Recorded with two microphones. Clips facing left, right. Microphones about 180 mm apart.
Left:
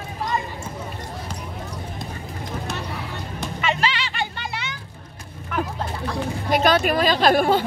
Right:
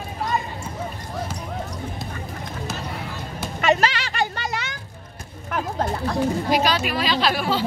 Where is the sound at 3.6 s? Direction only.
45° right (ahead or behind).